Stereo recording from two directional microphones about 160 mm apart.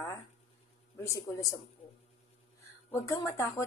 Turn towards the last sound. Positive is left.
turn(degrees=20)  # may be behind; listen again after turning